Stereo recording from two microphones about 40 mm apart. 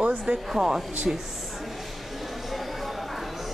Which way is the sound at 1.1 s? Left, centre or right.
Right.